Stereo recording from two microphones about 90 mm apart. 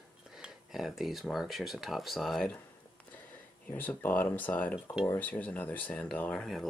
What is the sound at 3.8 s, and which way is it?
Speech, 20° left (ahead or behind).